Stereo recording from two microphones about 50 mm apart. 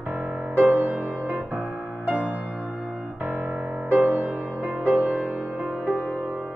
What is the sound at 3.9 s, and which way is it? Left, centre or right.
Music, right.